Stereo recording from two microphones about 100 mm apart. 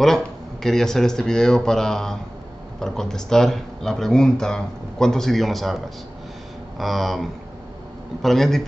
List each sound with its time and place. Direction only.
0.0 s speech: 5° left (ahead or behind)
6.8 s speech: centre (ahead or behind)